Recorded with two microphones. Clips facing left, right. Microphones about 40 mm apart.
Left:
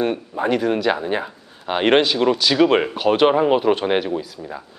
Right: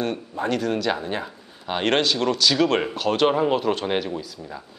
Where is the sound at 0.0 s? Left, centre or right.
Centre.